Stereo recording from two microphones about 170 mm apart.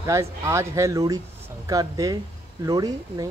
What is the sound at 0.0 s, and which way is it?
Speech, 15° right (ahead or behind).